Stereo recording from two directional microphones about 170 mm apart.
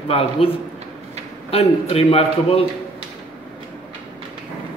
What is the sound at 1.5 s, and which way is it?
A man's voice, 35° left (ahead or behind).